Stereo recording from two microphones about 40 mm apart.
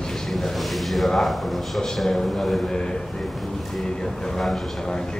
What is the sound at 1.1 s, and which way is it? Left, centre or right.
A man's voice, centre.